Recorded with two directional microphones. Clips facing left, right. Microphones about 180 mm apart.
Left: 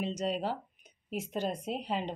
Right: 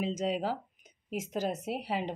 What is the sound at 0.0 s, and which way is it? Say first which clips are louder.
A woman's voice: right 1 dB; 90° right.